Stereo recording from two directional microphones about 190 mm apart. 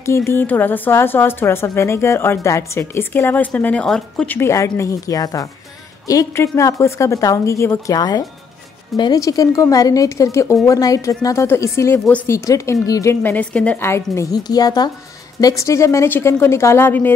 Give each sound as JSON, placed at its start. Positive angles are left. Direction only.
{"t": 0.0, "sound": "a woman's voice", "side_deg": 15}